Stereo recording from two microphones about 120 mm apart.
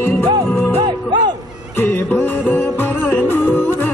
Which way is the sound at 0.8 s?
40° right (ahead or behind).